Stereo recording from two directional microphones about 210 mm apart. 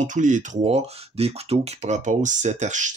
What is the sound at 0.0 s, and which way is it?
Speech, 35° right (ahead or behind).